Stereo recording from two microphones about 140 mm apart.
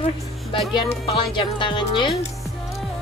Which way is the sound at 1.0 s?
35° left (ahead or behind).